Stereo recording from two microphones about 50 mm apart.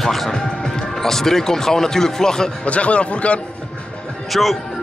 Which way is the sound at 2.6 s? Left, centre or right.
Left.